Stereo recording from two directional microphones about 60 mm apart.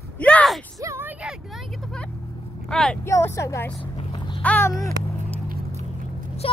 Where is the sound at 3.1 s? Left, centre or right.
Left.